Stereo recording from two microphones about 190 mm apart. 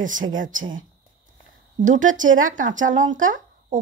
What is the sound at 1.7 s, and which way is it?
Speech, 40° right (ahead or behind).